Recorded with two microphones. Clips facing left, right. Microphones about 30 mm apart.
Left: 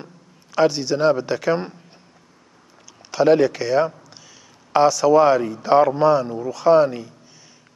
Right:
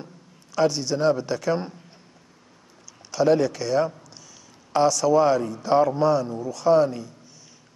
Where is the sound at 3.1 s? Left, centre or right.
Left.